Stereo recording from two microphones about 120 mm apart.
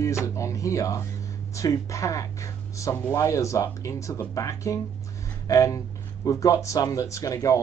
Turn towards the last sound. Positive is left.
turn(degrees=30)  # may be behind; listen again after turning